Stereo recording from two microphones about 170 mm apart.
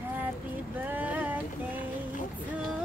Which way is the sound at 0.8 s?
10° right (ahead or behind).